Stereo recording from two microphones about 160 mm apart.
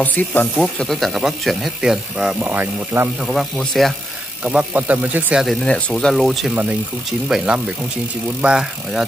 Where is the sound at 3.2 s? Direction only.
Centre (ahead or behind).